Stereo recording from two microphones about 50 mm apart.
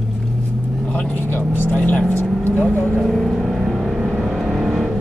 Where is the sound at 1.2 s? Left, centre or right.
Left.